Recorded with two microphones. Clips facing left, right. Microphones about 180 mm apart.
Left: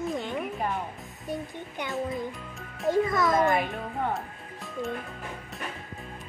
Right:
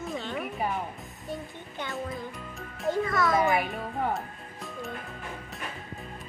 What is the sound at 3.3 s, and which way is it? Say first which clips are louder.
Music: left 1 dB; 5° right (ahead or behind).